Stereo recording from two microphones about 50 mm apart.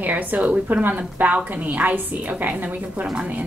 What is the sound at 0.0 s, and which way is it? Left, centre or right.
A woman's voice, right.